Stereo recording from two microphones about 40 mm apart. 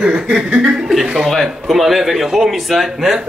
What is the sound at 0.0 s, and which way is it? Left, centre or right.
Chuckle, right.